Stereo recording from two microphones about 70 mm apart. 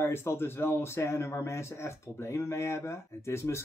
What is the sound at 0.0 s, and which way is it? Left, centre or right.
A man's voice, left.